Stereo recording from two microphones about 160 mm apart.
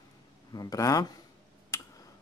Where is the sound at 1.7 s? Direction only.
20° left (ahead or behind).